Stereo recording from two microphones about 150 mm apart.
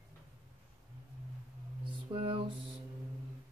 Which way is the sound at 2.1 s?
35° right (ahead or behind).